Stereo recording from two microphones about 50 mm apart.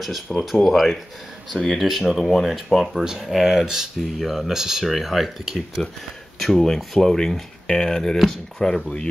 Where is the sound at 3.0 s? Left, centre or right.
Centre.